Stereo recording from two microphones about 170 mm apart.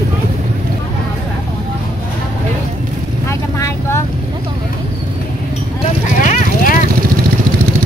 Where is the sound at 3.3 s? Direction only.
15° left (ahead or behind).